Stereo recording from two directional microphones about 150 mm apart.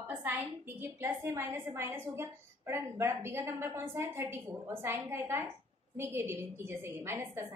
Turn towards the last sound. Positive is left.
turn(degrees=-15)  # may be behind; listen again after turning